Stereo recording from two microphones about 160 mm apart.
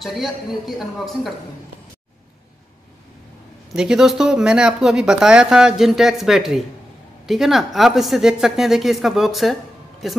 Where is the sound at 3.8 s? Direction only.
5° right (ahead or behind).